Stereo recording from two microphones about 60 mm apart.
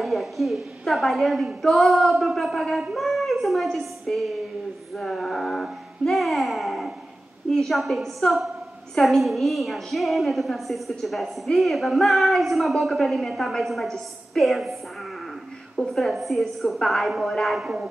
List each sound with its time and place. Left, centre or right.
0.0 s a woman's voice: centre
2.9 s a sound: centre
3.6 s a woman's voice: centre
17.6 s speech: centre